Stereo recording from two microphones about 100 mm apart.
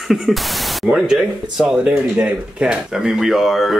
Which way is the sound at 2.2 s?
10° right (ahead or behind).